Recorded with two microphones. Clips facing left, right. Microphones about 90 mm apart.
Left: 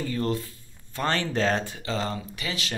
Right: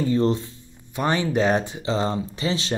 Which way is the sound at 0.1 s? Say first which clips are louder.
Right 7 dB; 25° right (ahead or behind).